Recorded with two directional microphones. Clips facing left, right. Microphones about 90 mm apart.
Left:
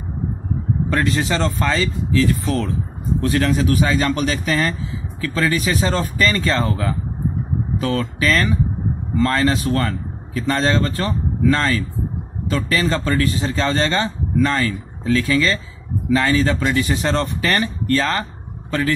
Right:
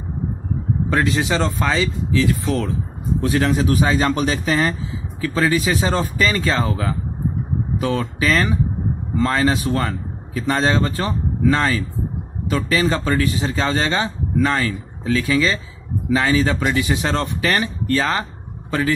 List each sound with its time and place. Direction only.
0.8 s speech: 5° right (ahead or behind)
3.2 s a man's voice: 15° right (ahead or behind)